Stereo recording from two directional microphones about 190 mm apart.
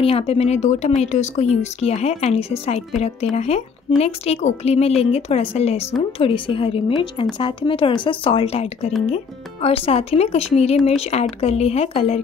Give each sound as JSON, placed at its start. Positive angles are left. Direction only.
{"t": 0.0, "sound": "speech", "side_deg": 30}